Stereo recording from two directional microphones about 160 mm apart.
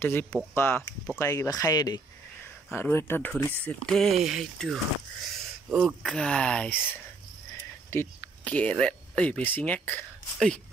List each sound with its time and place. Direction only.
0.0 s speech: 10° left (ahead or behind)
7.9 s speech: 10° left (ahead or behind)